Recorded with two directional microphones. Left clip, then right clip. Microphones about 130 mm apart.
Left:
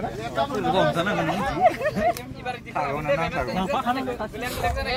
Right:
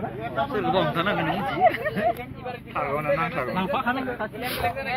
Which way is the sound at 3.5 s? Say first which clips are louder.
Left 1 dB; 45° left (ahead or behind).